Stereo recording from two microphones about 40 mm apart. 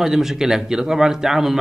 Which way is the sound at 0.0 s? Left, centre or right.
Centre.